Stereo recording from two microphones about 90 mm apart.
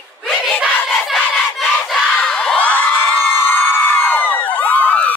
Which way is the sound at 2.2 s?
10° left (ahead or behind).